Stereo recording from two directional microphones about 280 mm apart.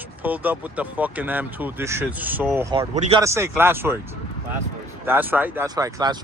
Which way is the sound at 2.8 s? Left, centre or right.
Right.